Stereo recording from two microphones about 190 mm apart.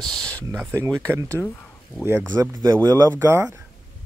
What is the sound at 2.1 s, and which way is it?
Speech, 10° right (ahead or behind).